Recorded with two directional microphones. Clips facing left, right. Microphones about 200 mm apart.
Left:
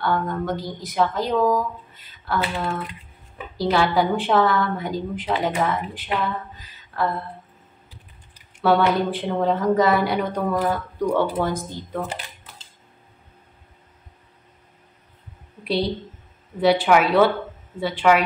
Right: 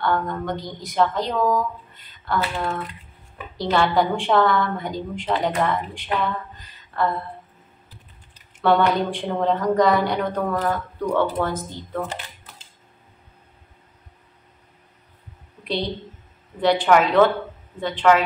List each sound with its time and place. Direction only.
0.0 s a woman's voice: 5° left (ahead or behind)
6.2 s a sound: 5° left (ahead or behind)
8.4 s speech: 5° left (ahead or behind)
15.6 s a woman's voice: 10° left (ahead or behind)